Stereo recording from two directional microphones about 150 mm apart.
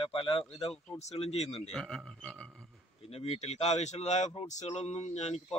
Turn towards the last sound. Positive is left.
turn(degrees=45)  # may be behind; listen again after turning